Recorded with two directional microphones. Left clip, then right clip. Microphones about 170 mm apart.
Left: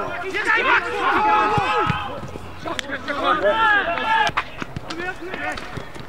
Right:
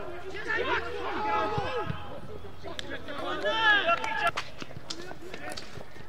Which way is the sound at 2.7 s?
35° left (ahead or behind).